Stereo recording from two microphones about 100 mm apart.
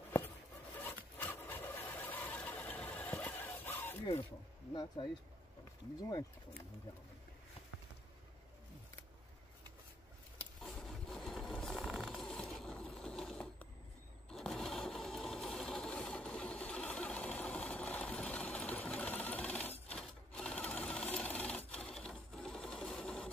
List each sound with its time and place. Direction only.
0.7 s wood: 20° left (ahead or behind)
5.0 s speech: 60° left (ahead or behind)
10.6 s vehicle: 5° left (ahead or behind)
14.3 s sewing machine: 5° left (ahead or behind)